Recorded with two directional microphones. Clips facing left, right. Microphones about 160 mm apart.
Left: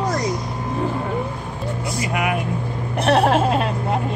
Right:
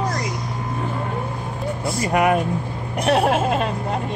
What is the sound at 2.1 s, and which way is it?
Speech, 40° right (ahead or behind).